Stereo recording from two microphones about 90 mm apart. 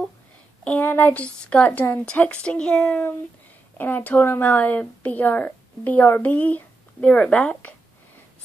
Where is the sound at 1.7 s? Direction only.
25° left (ahead or behind).